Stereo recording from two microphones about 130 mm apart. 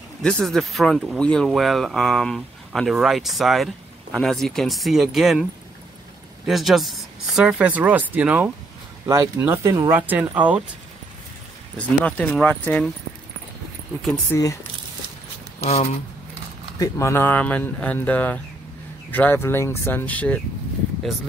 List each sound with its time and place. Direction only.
0.2 s speech: 5° left (ahead or behind); by 8.5 s 10° right (ahead or behind)
9.0 s speech: 25° right (ahead or behind)
12.0 s speech: 10° left (ahead or behind)
14.3 s speech: 25° left (ahead or behind)
15.6 s speech: 55° left (ahead or behind)
16.7 s speech: 25° left (ahead or behind); by 20.3 s 10° left (ahead or behind)